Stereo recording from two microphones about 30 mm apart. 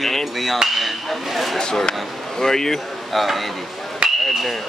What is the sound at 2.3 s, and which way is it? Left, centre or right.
Hammer, centre.